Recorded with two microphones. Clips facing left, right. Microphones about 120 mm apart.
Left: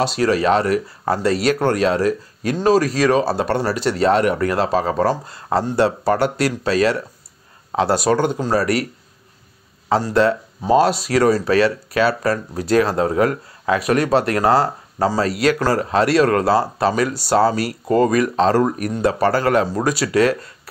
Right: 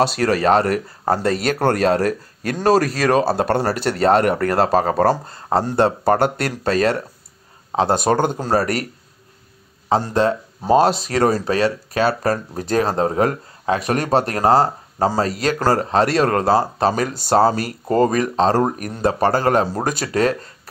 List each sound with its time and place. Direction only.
0.0 s speech: 55° right (ahead or behind)
7.7 s speech: 20° right (ahead or behind)
8.1 s speech: 45° right (ahead or behind)
9.8 s speech: 25° right (ahead or behind)
11.1 s speech: 40° right (ahead or behind)
11.4 s speech: 25° right (ahead or behind)
15.2 s speech: 40° right (ahead or behind)
18.7 s speech: 40° right (ahead or behind)